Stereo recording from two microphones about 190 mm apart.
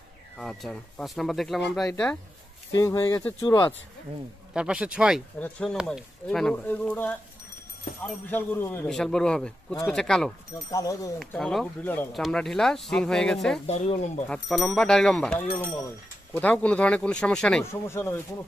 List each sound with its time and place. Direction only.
0.4 s speech: centre (ahead or behind)
2.7 s speech: 15° left (ahead or behind)
4.6 s speech: 5° right (ahead or behind)
10.7 s speech: 20° left (ahead or behind)
11.1 s speech: centre (ahead or behind)
13.7 s speech: 35° left (ahead or behind)
14.3 s speech: 5° left (ahead or behind)